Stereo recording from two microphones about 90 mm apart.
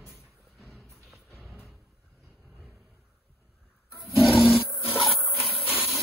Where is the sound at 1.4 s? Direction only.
5° right (ahead or behind).